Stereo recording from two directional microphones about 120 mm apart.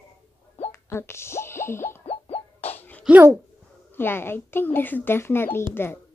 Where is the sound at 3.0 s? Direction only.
15° right (ahead or behind).